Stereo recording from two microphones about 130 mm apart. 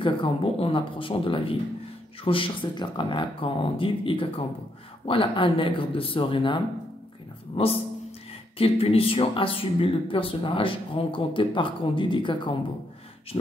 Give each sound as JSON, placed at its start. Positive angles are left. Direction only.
{"t": 0.0, "sound": "speech", "side_deg": 45}